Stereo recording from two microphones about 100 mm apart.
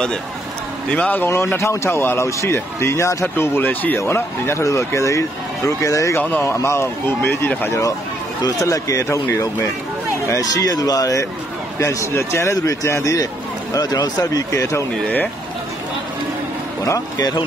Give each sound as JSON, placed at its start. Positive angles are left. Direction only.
{"t": 0.8, "sound": "speech", "side_deg": 15}
{"t": 8.4, "sound": "speech", "side_deg": 40}
{"t": 16.8, "sound": "speech", "side_deg": 35}